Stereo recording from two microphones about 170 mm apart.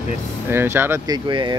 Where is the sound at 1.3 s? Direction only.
25° right (ahead or behind).